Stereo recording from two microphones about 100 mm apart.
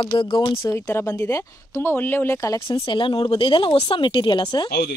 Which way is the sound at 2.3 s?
35° left (ahead or behind).